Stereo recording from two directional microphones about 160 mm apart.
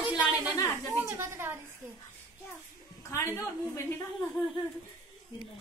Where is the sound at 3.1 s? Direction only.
15° left (ahead or behind).